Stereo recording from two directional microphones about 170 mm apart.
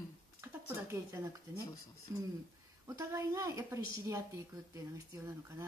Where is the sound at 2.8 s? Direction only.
20° right (ahead or behind).